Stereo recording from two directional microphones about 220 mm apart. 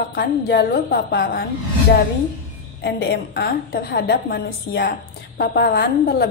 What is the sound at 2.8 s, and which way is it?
A woman's voice, 50° left (ahead or behind).